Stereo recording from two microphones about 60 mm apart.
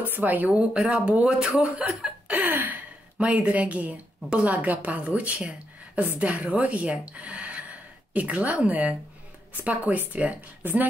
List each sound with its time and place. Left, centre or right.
0.0 s a woman's voice: right
2.5 s a sound: right
3.2 s a woman's voice: right